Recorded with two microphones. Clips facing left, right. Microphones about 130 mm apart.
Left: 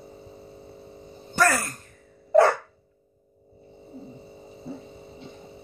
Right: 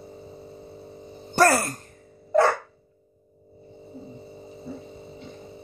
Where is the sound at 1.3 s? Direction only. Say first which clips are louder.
Right 4 dB; 35° right (ahead or behind).